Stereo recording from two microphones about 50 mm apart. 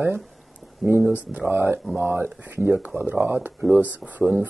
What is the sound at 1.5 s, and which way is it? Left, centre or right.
Speech, right.